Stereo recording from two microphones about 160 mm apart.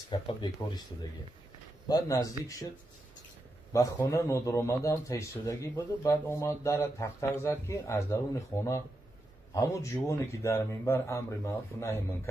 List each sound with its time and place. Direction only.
0.1 s speech: 25° left (ahead or behind)
1.9 s speech: 20° left (ahead or behind)
3.7 s a man's voice: 20° left (ahead or behind)